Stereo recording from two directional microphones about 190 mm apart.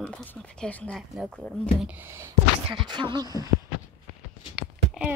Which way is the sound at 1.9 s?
15° right (ahead or behind).